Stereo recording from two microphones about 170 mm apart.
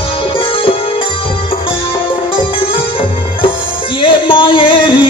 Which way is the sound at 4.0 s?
30° left (ahead or behind).